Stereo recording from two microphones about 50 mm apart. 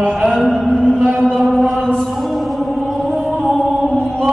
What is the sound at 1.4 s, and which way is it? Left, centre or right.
Chant, centre.